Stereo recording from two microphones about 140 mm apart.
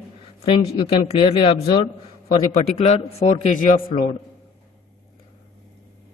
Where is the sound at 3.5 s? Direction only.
80° left.